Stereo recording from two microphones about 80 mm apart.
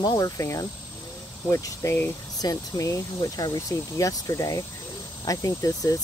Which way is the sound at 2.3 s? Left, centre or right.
Left.